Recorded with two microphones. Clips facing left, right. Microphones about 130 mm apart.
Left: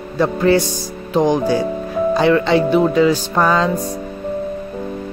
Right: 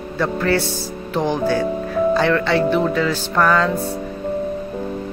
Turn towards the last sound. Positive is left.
turn(degrees=15)  # may be behind; listen again after turning